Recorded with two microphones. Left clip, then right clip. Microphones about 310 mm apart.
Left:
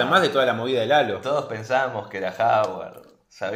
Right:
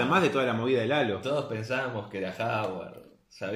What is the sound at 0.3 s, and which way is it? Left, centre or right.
Speech, left.